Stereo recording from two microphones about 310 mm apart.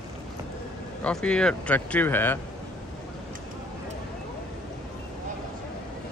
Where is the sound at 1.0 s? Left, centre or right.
Centre.